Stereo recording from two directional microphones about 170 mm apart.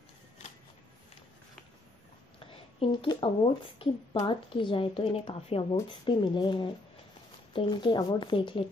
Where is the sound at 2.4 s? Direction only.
30° left (ahead or behind).